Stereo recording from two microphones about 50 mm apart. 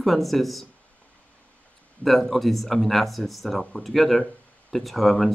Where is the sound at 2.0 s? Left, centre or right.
Centre.